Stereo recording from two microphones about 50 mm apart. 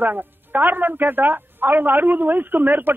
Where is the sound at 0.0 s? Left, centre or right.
Right.